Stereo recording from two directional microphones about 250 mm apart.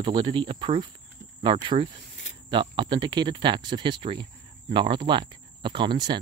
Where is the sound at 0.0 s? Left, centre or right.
Centre.